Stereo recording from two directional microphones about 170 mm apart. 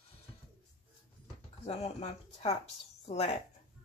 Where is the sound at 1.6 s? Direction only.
40° left (ahead or behind).